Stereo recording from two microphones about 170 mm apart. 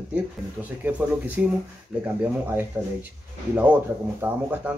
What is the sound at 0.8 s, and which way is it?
Speech, 10° right (ahead or behind).